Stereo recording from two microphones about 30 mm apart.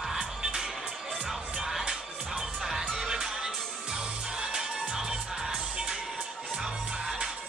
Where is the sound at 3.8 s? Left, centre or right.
Right.